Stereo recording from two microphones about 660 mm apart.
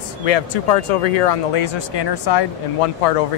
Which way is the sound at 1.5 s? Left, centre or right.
Left.